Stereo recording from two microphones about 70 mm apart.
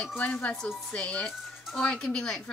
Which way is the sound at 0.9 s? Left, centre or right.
Centre.